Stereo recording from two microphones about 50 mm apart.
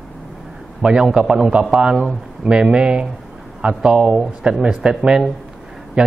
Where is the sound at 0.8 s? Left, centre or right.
Centre.